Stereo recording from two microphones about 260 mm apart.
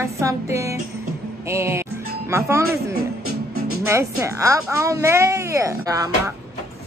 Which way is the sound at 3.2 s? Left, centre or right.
Right.